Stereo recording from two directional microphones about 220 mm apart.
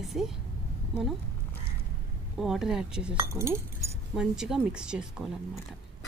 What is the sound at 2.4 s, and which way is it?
Speech, centre (ahead or behind).